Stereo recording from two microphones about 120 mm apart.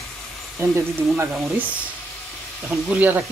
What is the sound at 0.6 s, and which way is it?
Speech, 20° right (ahead or behind).